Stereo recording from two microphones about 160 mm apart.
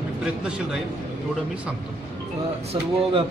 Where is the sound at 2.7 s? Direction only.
35° right (ahead or behind).